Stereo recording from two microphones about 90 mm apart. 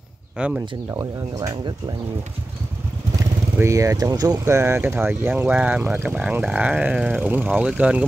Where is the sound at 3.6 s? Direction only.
35° right (ahead or behind).